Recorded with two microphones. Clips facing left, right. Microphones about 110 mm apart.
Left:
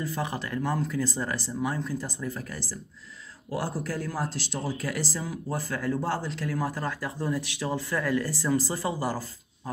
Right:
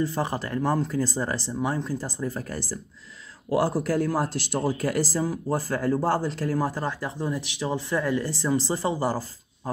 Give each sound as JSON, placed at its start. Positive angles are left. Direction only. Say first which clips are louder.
{"t": 0.0, "sound": "speech", "louder": "right 5 dB", "side_deg": -35}
{"t": 3.4, "sound": "speech", "louder": "right 8 dB", "side_deg": -70}